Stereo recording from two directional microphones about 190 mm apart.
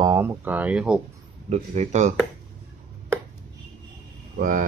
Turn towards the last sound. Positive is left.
turn(degrees=-45)  # may be behind; listen again after turning